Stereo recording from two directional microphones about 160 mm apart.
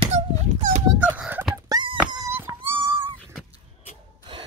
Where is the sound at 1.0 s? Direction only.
10° right (ahead or behind).